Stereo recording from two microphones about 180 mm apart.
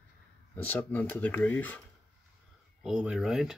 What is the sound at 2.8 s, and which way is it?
Speech, 5° right (ahead or behind).